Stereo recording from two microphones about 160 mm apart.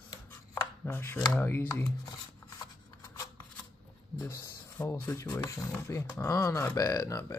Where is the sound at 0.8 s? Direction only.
15° left (ahead or behind).